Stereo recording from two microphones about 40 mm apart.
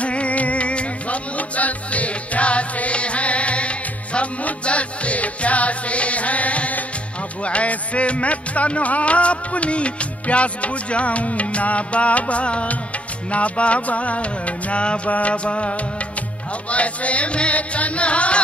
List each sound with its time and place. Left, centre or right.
0.0 s music: left